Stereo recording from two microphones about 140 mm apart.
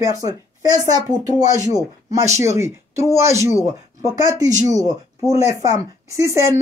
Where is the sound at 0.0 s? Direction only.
25° right (ahead or behind).